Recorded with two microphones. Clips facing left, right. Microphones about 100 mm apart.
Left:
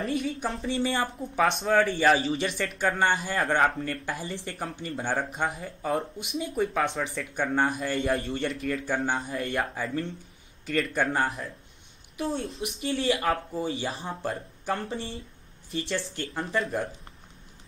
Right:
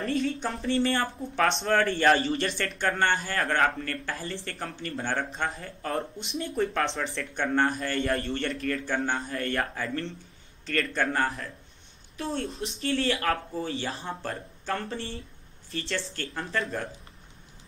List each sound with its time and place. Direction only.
0.0 s speech: centre (ahead or behind)
3.5 s speech: 15° left (ahead or behind)
4.5 s a man's voice: 5° left (ahead or behind)
13.6 s speech: 15° left (ahead or behind)
13.8 s speech: centre (ahead or behind)
15.7 s speech: 15° left (ahead or behind)
16.3 s speech: centre (ahead or behind)